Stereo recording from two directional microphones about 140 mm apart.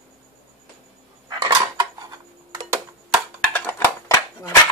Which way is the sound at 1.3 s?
30° right (ahead or behind).